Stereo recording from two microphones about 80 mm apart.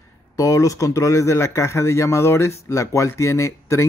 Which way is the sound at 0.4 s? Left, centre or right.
Left.